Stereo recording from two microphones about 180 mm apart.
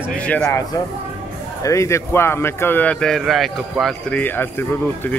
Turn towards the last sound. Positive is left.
turn(degrees=10)  # may be behind; listen again after turning